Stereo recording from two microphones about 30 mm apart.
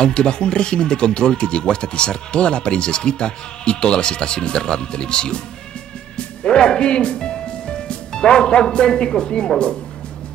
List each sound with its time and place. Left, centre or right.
0.0 s speech: left
6.1 s music: left
9.2 s speech: left